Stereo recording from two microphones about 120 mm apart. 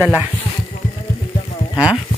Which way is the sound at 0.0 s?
10° right (ahead or behind).